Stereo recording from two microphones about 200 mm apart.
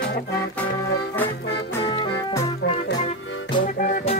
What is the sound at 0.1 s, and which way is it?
Music, 50° left (ahead or behind).